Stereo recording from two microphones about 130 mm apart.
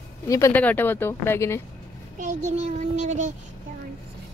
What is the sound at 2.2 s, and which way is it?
A child's voice, 60° right (ahead or behind).